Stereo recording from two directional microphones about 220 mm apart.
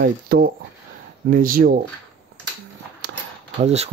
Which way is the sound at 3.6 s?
30° right (ahead or behind).